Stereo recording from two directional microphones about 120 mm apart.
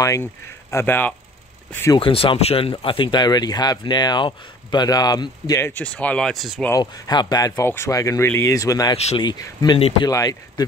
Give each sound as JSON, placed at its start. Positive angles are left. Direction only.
{"t": 0.0, "sound": "speech", "side_deg": 25}
{"t": 2.0, "sound": "speech", "side_deg": 50}
{"t": 5.6, "sound": "speech", "side_deg": 15}
{"t": 6.8, "sound": "speech", "side_deg": 35}
{"t": 8.9, "sound": "speech", "side_deg": 60}
{"t": 9.2, "sound": "speech", "side_deg": 35}